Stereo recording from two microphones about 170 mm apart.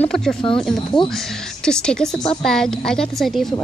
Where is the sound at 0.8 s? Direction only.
25° left (ahead or behind).